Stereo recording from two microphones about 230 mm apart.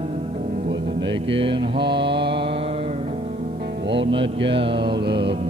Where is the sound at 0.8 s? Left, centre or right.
Right.